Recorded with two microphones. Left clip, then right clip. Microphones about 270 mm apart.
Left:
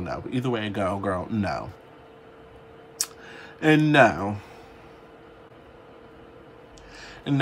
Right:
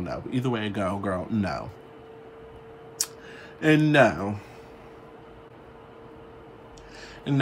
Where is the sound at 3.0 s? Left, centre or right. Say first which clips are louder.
Even; centre.